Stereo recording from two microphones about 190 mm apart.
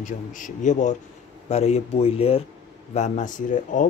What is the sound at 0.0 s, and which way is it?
Speech, 40° left (ahead or behind).